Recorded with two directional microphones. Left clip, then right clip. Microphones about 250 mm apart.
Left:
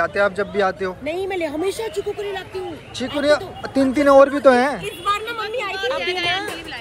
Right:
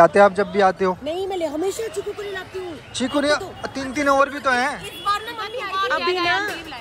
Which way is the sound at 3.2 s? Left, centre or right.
Centre.